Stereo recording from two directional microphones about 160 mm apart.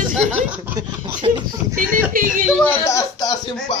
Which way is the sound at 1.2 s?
35° right (ahead or behind).